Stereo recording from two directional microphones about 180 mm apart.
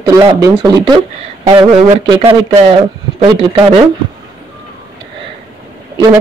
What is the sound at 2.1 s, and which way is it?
Speech, 30° right (ahead or behind).